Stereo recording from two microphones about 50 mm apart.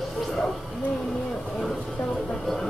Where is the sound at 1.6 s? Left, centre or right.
Centre.